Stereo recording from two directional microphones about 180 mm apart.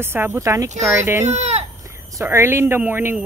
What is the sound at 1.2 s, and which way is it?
Speech, 40° right (ahead or behind).